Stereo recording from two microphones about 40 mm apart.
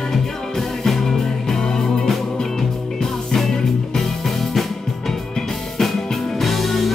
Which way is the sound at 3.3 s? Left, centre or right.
Centre.